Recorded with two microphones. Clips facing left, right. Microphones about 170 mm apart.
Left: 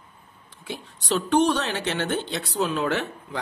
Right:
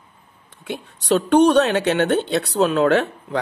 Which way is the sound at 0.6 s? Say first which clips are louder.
Right 6 dB; 60° right (ahead or behind).